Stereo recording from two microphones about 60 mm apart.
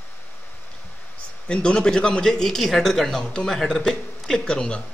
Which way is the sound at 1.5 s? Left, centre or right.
Centre.